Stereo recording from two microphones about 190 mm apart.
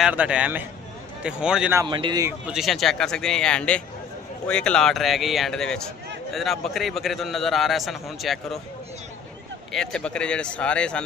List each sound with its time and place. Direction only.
0.0 s a man's voice: 5° right (ahead or behind)
1.8 s a man's voice: 25° right (ahead or behind)
2.4 s a man's voice: centre (ahead or behind)
9.7 s a man's voice: 5° left (ahead or behind)